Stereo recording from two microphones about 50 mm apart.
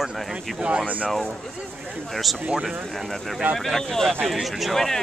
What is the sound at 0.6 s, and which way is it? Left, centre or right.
Speech, right.